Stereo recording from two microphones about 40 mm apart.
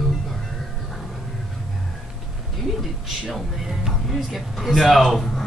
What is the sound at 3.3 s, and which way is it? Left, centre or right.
Speech, centre.